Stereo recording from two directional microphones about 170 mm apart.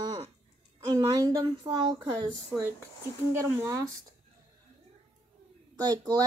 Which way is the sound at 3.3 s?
15° right (ahead or behind).